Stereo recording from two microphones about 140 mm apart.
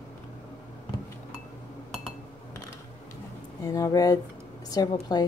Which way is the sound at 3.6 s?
25° left (ahead or behind).